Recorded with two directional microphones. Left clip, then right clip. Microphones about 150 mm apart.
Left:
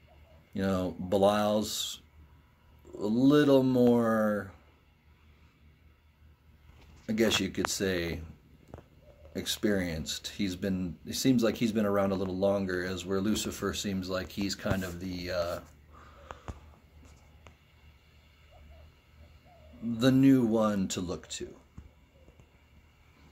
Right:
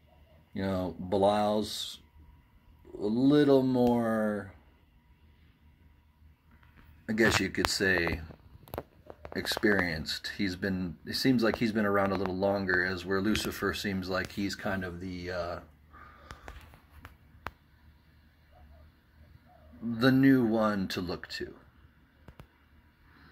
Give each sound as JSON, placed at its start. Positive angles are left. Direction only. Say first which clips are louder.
{"t": 0.6, "sound": "speech", "louder": "left 2 dB", "side_deg": 5}
{"t": 3.0, "sound": "speech", "louder": "left 1 dB", "side_deg": 5}
{"t": 7.1, "sound": "speech", "louder": "right 2 dB", "side_deg": 0}
{"t": 9.6, "sound": "speech", "louder": "right 5 dB", "side_deg": 5}
{"t": 13.7, "sound": "speech", "louder": "right 1 dB", "side_deg": 0}
{"t": 19.9, "sound": "speech", "louder": "even", "side_deg": 5}
{"t": 20.5, "sound": "speech", "louder": "even", "side_deg": 20}
{"t": 21.1, "sound": "speech", "louder": "right 1 dB", "side_deg": 5}